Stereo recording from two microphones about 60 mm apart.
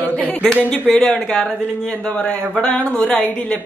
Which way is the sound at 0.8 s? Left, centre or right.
Centre.